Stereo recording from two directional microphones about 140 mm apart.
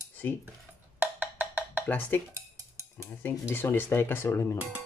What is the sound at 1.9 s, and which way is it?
Speech, 15° left (ahead or behind).